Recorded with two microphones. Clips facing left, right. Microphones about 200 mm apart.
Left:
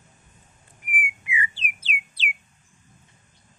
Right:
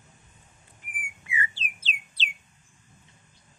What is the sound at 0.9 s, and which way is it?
Bird, 15° left (ahead or behind).